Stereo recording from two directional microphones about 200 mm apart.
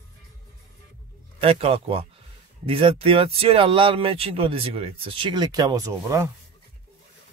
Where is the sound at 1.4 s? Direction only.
30° right (ahead or behind).